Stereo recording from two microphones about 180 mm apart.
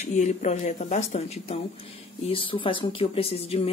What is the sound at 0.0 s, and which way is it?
Speech, 40° left (ahead or behind).